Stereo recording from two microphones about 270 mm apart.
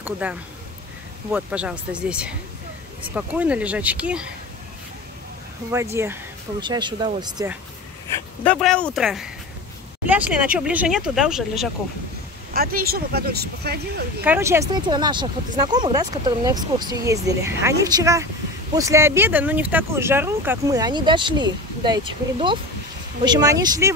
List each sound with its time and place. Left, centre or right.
0.0 s speech: centre
6.0 s speech: centre
8.5 s speech: centre
12.5 s speech: right
14.2 s speech: centre